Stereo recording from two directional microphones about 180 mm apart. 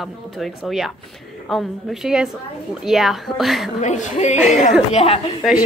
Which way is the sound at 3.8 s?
40° left (ahead or behind).